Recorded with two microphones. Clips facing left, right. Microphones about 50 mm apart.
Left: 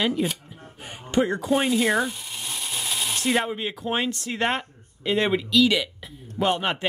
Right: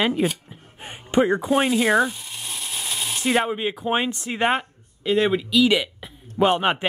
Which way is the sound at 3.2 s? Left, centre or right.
Centre.